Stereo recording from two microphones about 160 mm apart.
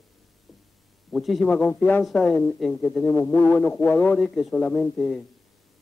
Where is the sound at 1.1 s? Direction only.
Centre (ahead or behind).